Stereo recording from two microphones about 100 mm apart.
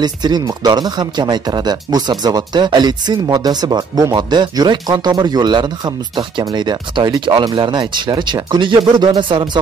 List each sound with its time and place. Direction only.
0.0 s speech: 45° right (ahead or behind)